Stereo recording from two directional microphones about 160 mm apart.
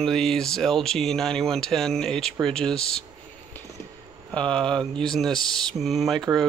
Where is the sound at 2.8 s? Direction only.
35° left (ahead or behind).